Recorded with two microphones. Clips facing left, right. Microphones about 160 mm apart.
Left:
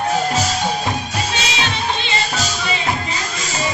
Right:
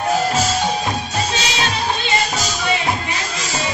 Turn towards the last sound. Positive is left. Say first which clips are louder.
# right 1 dB
turn(degrees=-40)  # may be behind; listen again after turning